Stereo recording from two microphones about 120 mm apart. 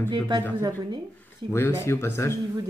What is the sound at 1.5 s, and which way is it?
Speech, 20° left (ahead or behind).